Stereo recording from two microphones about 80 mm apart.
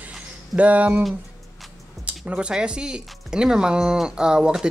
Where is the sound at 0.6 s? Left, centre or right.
Centre.